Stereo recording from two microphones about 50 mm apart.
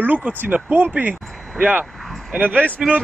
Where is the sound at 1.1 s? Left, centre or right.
Centre.